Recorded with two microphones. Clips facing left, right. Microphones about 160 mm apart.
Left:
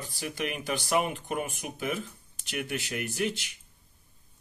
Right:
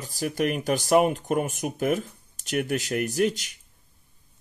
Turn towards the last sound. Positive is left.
turn(degrees=-40)  # may be behind; listen again after turning